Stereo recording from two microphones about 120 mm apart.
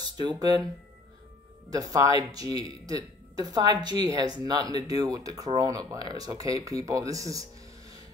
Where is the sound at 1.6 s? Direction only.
30° right (ahead or behind).